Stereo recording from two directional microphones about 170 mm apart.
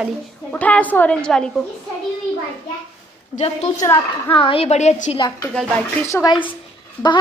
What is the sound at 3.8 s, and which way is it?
Speech, 15° left (ahead or behind).